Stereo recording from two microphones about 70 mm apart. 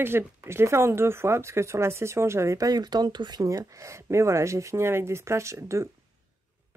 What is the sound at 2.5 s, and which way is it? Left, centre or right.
Speech, right.